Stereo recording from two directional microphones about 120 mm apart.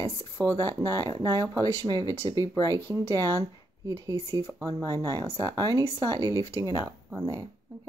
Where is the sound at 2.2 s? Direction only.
40° right (ahead or behind).